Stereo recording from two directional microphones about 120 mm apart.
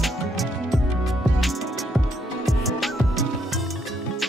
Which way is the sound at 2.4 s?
Centre (ahead or behind).